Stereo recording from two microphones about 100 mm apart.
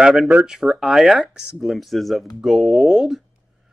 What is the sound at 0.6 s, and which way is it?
Speech, centre (ahead or behind).